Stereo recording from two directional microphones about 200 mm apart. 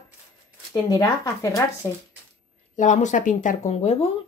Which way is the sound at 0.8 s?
20° left (ahead or behind).